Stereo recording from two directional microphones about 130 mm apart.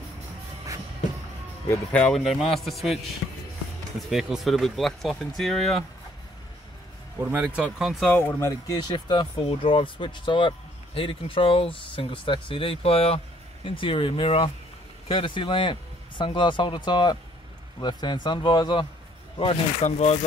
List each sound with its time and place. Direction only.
1.9 s speech: 10° left (ahead or behind)
4.1 s speech: 5° right (ahead or behind)
7.2 s speech: 15° right (ahead or behind)
7.8 s speech: centre (ahead or behind)
8.1 s speech: 15° left (ahead or behind)
8.7 s speech: 35° left (ahead or behind)
19.3 s speech: 50° left (ahead or behind)